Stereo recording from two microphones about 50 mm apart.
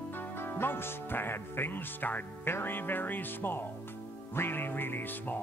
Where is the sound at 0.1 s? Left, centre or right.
Left.